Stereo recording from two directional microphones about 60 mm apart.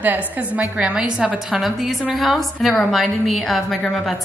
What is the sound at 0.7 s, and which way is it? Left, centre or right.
A woman's voice, centre.